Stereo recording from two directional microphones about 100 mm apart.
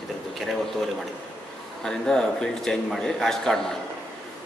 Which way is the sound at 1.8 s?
5° left (ahead or behind).